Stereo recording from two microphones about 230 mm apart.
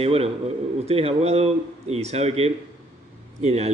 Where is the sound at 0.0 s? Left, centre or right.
Right.